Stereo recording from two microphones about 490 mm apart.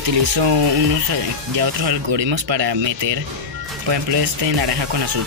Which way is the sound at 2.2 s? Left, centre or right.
Right.